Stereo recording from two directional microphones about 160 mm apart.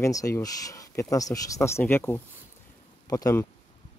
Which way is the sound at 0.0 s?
20° left (ahead or behind).